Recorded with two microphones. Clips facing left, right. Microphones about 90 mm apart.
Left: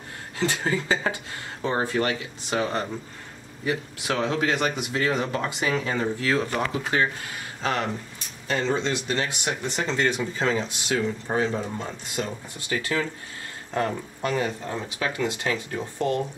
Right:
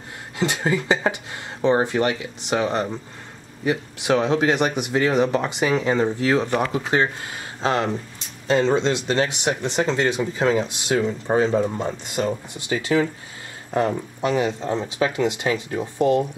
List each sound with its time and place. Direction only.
0.4 s speech: 20° right (ahead or behind)